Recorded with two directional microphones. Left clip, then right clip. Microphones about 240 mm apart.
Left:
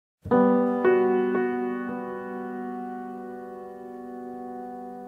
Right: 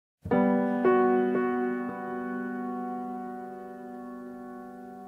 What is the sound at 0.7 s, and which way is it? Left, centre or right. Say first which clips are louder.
Music: left 2 dB; centre.